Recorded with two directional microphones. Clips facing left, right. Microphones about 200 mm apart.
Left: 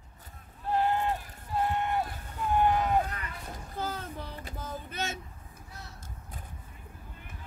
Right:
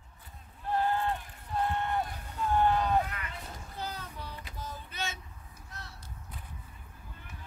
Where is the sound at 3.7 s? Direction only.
50° left (ahead or behind).